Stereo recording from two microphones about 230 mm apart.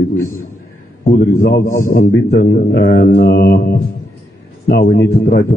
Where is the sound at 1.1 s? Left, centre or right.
Left.